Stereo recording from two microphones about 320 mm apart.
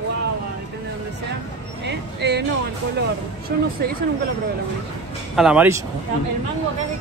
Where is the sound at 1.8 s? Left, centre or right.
Right.